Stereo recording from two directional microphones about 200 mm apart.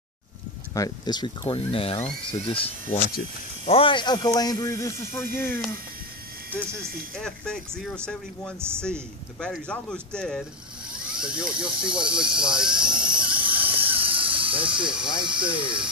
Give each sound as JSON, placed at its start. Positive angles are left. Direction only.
{"t": 0.7, "sound": "speech", "side_deg": 20}
{"t": 7.2, "sound": "speech", "side_deg": 5}
{"t": 8.5, "sound": "speech", "side_deg": -10}
{"t": 8.8, "sound": "speech", "side_deg": 5}
{"t": 12.4, "sound": "cricket", "side_deg": -5}
{"t": 13.8, "sound": "a sound", "side_deg": -25}
{"t": 15.2, "sound": "speech", "side_deg": -25}